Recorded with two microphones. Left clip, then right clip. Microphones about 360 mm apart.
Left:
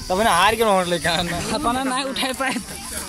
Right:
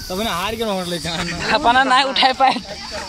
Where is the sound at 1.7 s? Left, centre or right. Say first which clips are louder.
Right 11 dB; centre.